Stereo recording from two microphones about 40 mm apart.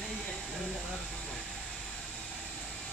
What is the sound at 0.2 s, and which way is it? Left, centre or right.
Hair dryer, left.